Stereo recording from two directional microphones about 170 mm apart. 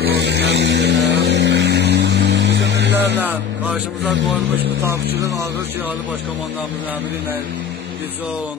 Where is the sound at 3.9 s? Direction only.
90° right.